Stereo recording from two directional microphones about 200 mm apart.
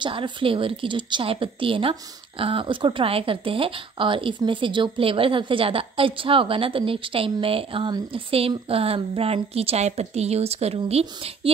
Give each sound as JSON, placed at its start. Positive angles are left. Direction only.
{"t": 0.0, "sound": "speech", "side_deg": -25}